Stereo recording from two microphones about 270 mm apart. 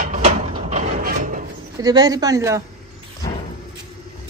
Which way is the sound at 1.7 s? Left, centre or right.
Centre.